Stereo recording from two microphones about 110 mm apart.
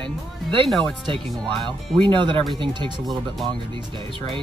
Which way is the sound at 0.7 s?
5° left (ahead or behind).